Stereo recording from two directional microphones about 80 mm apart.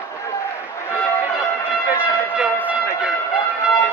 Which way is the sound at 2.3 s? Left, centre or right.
Centre.